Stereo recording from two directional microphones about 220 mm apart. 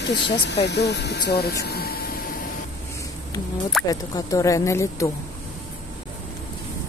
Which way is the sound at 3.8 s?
15° left (ahead or behind).